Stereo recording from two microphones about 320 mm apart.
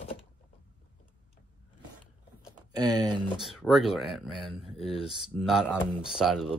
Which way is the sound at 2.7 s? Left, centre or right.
Centre.